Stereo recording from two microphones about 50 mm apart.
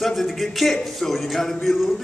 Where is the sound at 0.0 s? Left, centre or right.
Centre.